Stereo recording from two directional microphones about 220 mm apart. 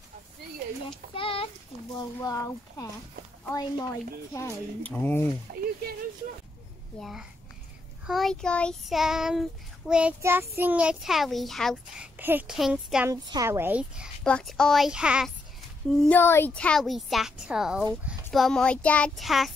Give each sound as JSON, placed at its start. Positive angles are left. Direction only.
{"t": 1.1, "sound": "a sound", "side_deg": 25}
{"t": 2.0, "sound": "speech", "side_deg": 15}
{"t": 7.0, "sound": "a child's voice", "side_deg": 0}
{"t": 16.1, "sound": "a child's voice", "side_deg": 10}